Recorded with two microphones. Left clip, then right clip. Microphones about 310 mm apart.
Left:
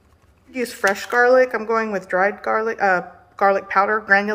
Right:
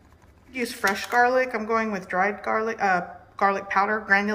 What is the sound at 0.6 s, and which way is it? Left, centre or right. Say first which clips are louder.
Speech: left 5 dB; centre.